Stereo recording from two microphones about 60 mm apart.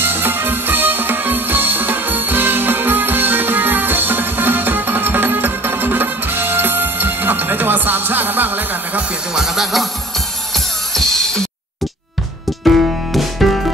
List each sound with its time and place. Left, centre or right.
0.0 s music: right
9.3 s speech: centre
10.5 s music: centre
12.6 s music: centre